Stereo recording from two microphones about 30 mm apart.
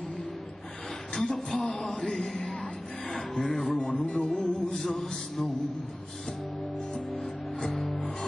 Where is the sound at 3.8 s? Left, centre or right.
Left.